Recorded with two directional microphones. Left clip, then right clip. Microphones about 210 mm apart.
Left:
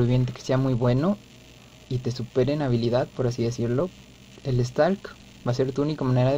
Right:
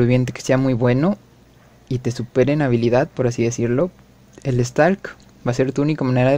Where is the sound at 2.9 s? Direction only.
35° right (ahead or behind).